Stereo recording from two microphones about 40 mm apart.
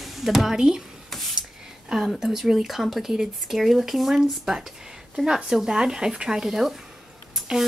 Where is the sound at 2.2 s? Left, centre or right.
Centre.